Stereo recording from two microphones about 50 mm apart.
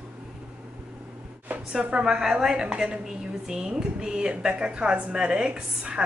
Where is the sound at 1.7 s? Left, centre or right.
Centre.